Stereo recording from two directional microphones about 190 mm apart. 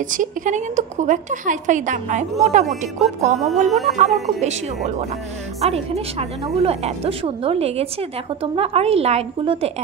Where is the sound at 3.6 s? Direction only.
Centre (ahead or behind).